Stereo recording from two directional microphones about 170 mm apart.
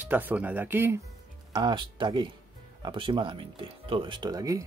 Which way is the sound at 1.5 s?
25° right (ahead or behind).